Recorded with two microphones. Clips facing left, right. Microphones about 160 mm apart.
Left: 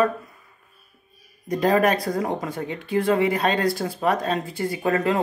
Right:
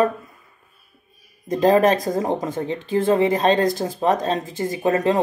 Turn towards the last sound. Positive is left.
turn(degrees=-20)  # may be behind; listen again after turning